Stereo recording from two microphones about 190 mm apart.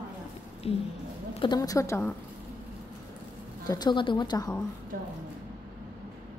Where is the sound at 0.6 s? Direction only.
30° left (ahead or behind); by 2.1 s 15° left (ahead or behind).